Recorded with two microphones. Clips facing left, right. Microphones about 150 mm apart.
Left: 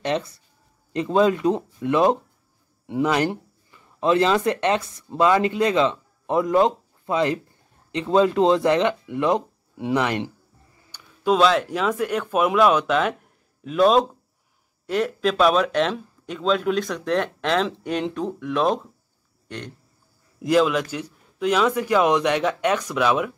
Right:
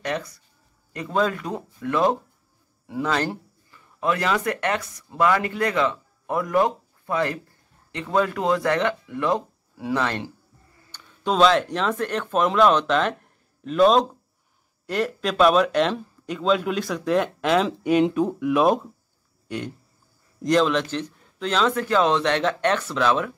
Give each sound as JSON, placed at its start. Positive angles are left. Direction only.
{"t": 0.0, "sound": "speech", "side_deg": 25}
{"t": 10.9, "sound": "speech", "side_deg": 5}
{"t": 19.4, "sound": "a sound", "side_deg": -10}
{"t": 20.4, "sound": "speech", "side_deg": 5}